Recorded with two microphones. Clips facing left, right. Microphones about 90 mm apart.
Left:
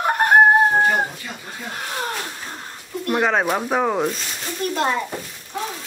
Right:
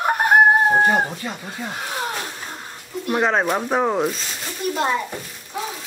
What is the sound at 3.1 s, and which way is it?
A child's voice, centre (ahead or behind).